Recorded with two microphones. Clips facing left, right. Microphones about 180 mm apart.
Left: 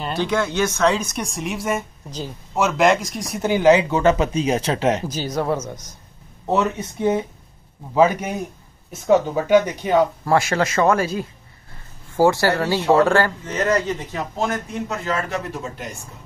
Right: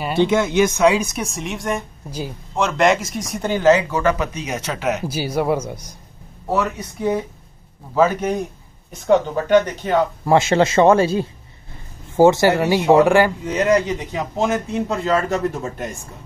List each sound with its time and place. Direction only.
0.2 s speech: 20° right (ahead or behind); by 1.9 s 5° left (ahead or behind)
2.0 s speech: 10° right (ahead or behind)
2.5 s speech: 5° left (ahead or behind); by 5.0 s 30° left (ahead or behind)
5.0 s speech: 10° right (ahead or behind)
6.4 s speech: 25° left (ahead or behind)
10.2 s speech: 25° right (ahead or behind)
14.9 s speech: 35° right (ahead or behind)